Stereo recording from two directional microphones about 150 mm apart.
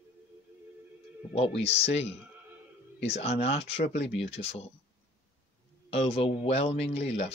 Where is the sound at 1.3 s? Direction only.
40° left (ahead or behind).